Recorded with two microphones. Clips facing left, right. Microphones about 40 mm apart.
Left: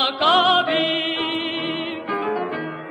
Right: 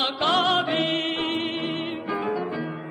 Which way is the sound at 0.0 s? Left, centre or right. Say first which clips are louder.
Left 5 dB; left.